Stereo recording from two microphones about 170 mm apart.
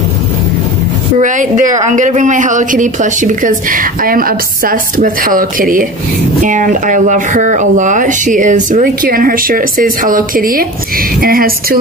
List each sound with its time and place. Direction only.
1.2 s speech: 50° right (ahead or behind)